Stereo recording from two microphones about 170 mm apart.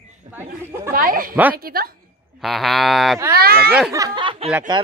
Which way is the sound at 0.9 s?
55° right (ahead or behind).